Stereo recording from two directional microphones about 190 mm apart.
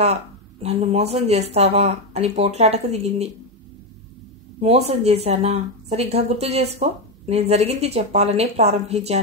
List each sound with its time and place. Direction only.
0.0 s speech: 35° right (ahead or behind)
4.6 s speech: 35° right (ahead or behind)